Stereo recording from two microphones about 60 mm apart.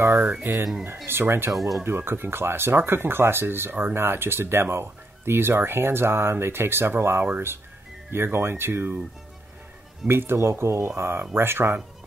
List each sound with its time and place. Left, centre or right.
0.2 s speech: right
1.0 s speech: right
1.5 s speech: centre
1.9 s speech: right
10.0 s speech: right